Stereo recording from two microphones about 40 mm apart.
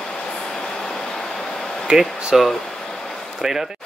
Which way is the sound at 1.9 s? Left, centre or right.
Right.